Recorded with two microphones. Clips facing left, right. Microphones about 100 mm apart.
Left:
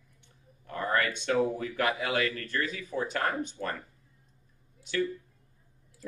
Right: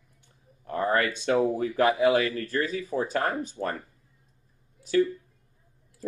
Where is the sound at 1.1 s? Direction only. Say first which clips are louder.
Right 4 dB; 35° right (ahead or behind).